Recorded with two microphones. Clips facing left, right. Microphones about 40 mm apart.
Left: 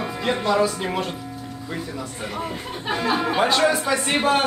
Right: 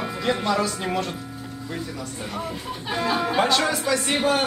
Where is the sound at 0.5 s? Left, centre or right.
Centre.